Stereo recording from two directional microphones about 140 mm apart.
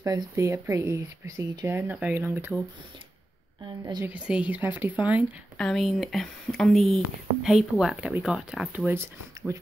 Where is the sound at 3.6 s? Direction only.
30° right (ahead or behind).